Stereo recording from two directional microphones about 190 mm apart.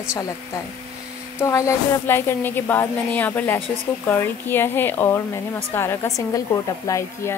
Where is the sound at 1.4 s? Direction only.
15° left (ahead or behind).